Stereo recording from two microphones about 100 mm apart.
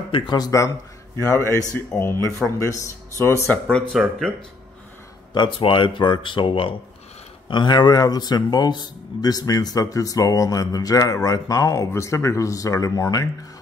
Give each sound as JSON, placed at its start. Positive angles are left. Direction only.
{"t": 0.1, "sound": "speech", "side_deg": 45}
{"t": 1.1, "sound": "speech", "side_deg": 30}
{"t": 3.9, "sound": "speech", "side_deg": 0}
{"t": 5.3, "sound": "speech", "side_deg": 55}
{"t": 7.4, "sound": "speech", "side_deg": 50}